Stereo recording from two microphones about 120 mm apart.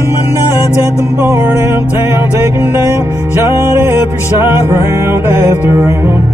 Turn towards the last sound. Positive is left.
turn(degrees=-20)  # may be behind; listen again after turning